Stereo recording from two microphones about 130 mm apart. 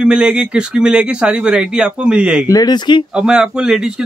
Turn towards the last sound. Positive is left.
turn(degrees=-5)  # may be behind; listen again after turning